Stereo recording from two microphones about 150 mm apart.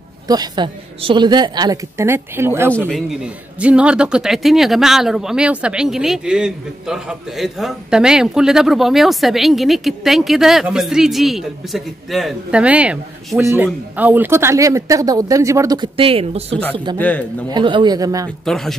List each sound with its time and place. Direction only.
0.3 s speech: 30° right (ahead or behind)
2.9 s a man's voice: 5° right (ahead or behind); by 18.3 s 25° right (ahead or behind)
18.4 s a man's voice: 5° left (ahead or behind)